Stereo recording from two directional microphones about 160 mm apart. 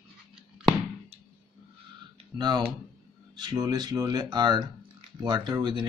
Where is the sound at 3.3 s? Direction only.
25° right (ahead or behind).